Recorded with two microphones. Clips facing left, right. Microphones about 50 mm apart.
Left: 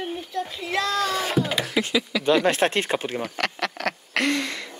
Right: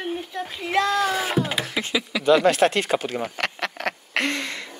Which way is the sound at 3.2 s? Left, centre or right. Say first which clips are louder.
Even; right.